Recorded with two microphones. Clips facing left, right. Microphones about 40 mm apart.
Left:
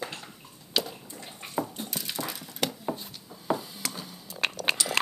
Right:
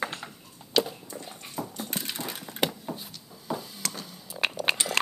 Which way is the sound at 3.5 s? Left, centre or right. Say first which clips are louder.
Even; centre.